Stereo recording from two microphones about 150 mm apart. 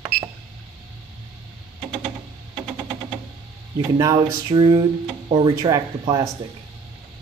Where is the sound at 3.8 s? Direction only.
25° right (ahead or behind).